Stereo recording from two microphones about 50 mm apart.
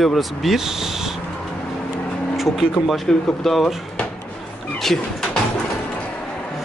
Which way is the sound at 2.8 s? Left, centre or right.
Centre.